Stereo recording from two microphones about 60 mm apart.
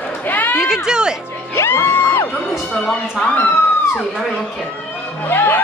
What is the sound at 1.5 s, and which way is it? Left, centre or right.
Music, left.